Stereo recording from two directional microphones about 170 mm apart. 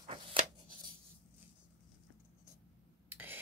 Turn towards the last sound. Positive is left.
turn(degrees=-10)  # may be behind; listen again after turning